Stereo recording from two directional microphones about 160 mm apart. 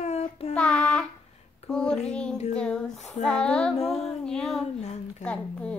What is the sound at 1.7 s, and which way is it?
Child singing, 5° left (ahead or behind).